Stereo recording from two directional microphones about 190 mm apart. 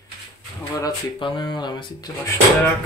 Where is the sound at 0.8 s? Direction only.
25° left (ahead or behind).